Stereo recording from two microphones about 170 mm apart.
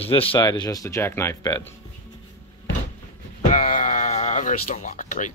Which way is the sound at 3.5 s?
50° left (ahead or behind).